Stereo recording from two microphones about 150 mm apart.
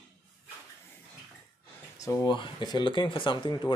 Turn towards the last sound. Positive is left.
turn(degrees=30)  # may be behind; listen again after turning